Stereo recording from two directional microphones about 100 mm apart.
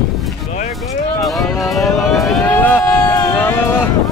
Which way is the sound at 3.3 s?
25° left (ahead or behind).